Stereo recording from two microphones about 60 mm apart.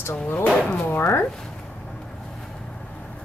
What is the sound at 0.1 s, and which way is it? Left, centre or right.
Speech, centre.